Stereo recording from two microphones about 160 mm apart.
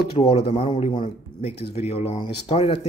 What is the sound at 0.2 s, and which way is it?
Speech, 40° left (ahead or behind).